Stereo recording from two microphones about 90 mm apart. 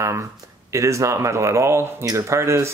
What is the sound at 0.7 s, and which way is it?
Speech, 35° right (ahead or behind).